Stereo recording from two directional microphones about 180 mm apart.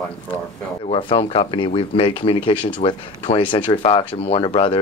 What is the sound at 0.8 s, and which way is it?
Speech, 30° left (ahead or behind).